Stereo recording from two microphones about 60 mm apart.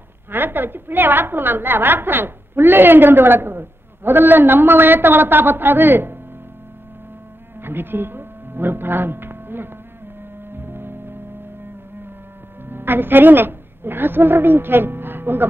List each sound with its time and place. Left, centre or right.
0.3 s a woman's voice: right
7.6 s speech: right
10.5 s music: right
12.6 s a woman's voice: right